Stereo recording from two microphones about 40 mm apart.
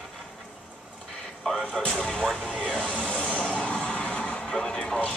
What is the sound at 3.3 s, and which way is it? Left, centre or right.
Music, left.